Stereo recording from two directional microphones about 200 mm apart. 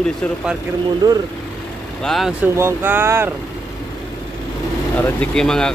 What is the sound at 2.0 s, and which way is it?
Speech, centre (ahead or behind).